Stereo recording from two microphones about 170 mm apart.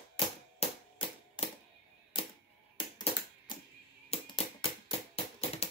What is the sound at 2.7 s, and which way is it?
Music, 25° left (ahead or behind).